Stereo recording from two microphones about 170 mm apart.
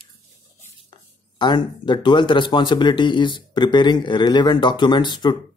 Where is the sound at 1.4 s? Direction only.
25° left (ahead or behind).